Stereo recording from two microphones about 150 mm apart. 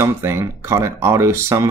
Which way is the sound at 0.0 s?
15° right (ahead or behind).